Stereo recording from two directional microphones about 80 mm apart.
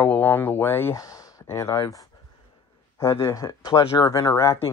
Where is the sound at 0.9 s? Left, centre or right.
Left.